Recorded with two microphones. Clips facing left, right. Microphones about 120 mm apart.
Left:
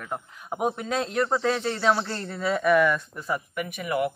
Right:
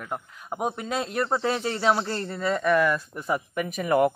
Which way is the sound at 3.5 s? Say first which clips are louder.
Right 7 dB; 35° right (ahead or behind).